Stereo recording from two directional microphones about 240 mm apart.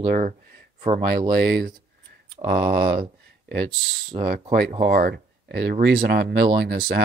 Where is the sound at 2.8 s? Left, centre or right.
Right.